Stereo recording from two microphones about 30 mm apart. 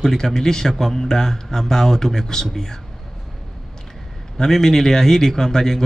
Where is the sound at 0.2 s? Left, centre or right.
Centre.